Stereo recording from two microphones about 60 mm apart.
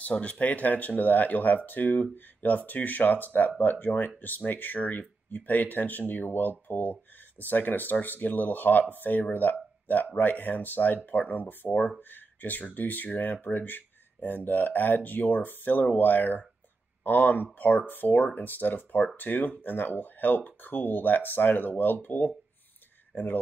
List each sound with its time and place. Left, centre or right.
0.0 s speech: left